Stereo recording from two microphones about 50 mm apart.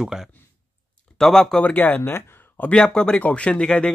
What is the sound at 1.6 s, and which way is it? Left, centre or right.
Speech, left.